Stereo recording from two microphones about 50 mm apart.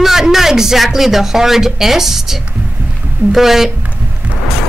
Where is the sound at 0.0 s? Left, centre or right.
Centre.